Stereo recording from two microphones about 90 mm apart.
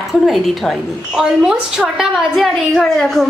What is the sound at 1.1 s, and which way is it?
A woman's voice, 10° right (ahead or behind).